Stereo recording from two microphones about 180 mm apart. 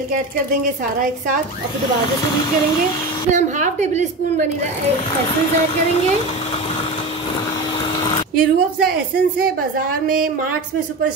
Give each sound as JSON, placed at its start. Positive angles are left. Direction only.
{"t": 3.3, "sound": "a woman's voice", "side_deg": -45}
{"t": 8.4, "sound": "a woman's voice", "side_deg": -55}